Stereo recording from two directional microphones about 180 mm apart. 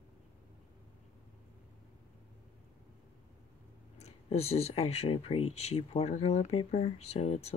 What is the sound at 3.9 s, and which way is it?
Speech, 35° left (ahead or behind).